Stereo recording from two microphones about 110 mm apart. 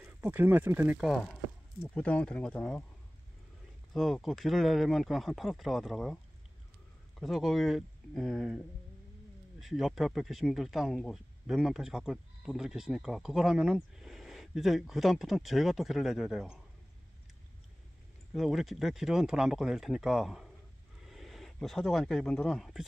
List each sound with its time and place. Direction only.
0.0 s speech: 15° right (ahead or behind)
2.0 s speech: 10° left (ahead or behind)
3.9 s speech: centre (ahead or behind)
7.2 s speech: centre (ahead or behind)
9.6 s speech: centre (ahead or behind)
18.3 s speech: centre (ahead or behind)